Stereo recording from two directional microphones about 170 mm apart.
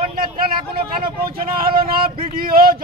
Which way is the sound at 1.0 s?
60° right (ahead or behind).